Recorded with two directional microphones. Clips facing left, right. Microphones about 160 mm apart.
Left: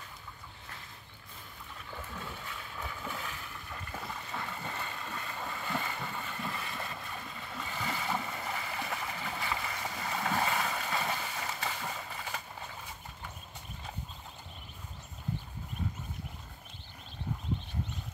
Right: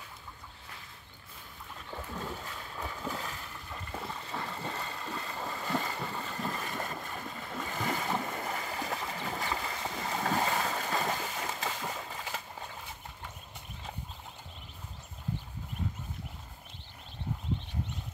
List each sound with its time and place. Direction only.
1.9 s boat: 35° right (ahead or behind)